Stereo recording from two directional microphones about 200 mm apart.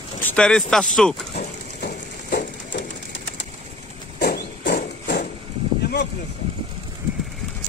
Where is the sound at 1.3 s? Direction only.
50° left (ahead or behind).